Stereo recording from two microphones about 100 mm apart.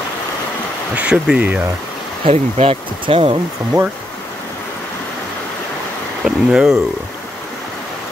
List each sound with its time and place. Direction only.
0.9 s speech: 10° right (ahead or behind)
2.2 s speech: 90° right; by 3.3 s 70° right (ahead or behind)
6.2 s speech: 5° right (ahead or behind)